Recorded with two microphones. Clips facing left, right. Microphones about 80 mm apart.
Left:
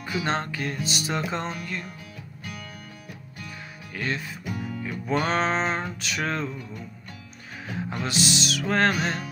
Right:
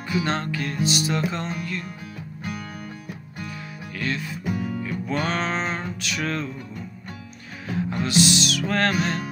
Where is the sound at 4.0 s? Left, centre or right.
Left.